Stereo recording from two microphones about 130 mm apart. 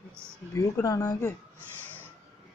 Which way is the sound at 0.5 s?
25° left (ahead or behind).